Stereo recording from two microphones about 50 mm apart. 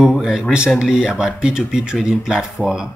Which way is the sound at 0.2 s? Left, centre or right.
Centre.